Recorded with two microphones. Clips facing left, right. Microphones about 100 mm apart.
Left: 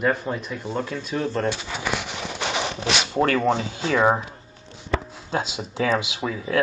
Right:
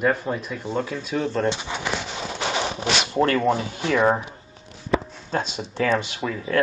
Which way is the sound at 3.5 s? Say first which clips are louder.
Even; 30° right (ahead or behind).